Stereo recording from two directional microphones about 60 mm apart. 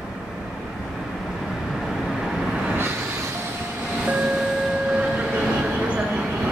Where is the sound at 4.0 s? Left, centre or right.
Centre.